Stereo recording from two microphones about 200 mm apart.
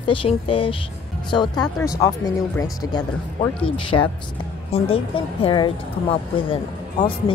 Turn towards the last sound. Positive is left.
turn(degrees=25)  # may be behind; listen again after turning